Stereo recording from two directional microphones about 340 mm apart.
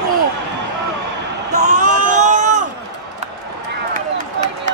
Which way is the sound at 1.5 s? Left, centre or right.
Right.